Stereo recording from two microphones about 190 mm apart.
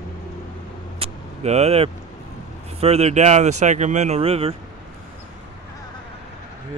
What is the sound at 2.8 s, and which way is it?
Speech, 35° right (ahead or behind).